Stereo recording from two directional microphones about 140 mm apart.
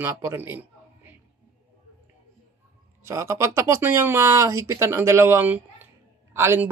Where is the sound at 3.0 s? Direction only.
20° right (ahead or behind).